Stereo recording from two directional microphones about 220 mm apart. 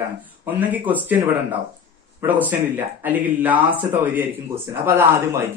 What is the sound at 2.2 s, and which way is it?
A man's voice, 10° right (ahead or behind).